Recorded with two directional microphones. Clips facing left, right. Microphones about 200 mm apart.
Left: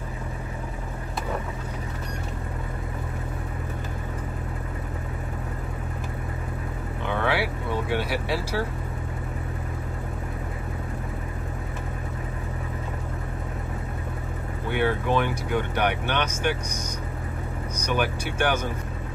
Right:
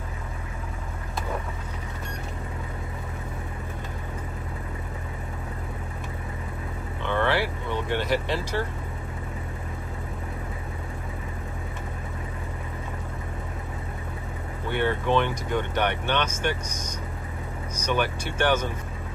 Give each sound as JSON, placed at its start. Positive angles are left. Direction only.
{"t": 7.1, "sound": "vehicle", "side_deg": 10}
{"t": 14.7, "sound": "speech", "side_deg": 10}
{"t": 17.8, "sound": "speech", "side_deg": 10}